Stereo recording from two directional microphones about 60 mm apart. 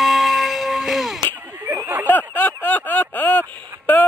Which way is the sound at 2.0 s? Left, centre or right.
Left.